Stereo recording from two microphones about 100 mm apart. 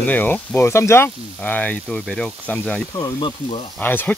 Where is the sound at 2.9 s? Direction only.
45° left (ahead or behind).